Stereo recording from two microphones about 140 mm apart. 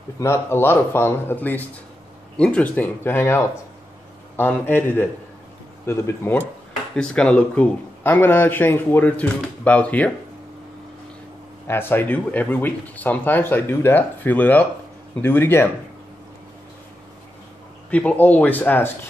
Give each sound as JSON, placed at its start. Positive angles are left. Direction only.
{"t": 0.2, "sound": "speech", "side_deg": 20}
{"t": 11.6, "sound": "speech", "side_deg": 15}
{"t": 17.8, "sound": "speech", "side_deg": 10}